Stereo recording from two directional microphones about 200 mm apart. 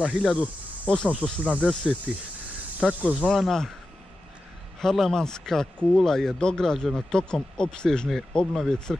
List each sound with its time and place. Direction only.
0.0 s speech: 5° right (ahead or behind)
4.7 s speech: centre (ahead or behind)